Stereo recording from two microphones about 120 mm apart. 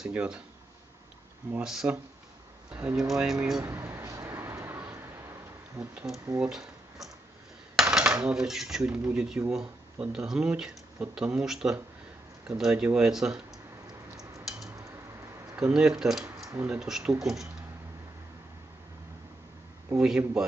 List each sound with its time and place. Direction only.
0.0 s speech: 10° right (ahead or behind)
1.6 s speech: 5° right (ahead or behind)
3.6 s a sound: 20° right (ahead or behind)
5.9 s speech: centre (ahead or behind)
15.5 s speech: 5° right (ahead or behind)
20.0 s speech: 5° right (ahead or behind)